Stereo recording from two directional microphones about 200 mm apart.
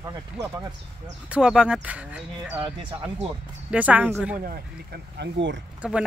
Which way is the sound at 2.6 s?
25° right (ahead or behind).